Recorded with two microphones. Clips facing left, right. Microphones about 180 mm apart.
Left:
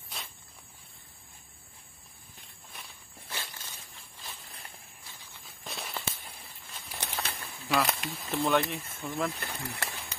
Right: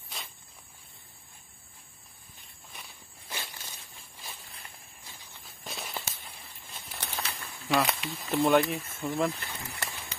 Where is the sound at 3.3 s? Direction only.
15° right (ahead or behind).